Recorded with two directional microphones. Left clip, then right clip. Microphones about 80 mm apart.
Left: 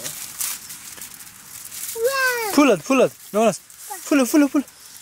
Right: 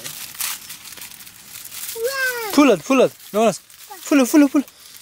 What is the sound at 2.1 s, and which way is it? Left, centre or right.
Cat, centre.